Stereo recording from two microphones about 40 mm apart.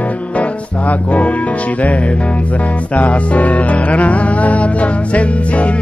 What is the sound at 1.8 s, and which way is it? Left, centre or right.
Music, left.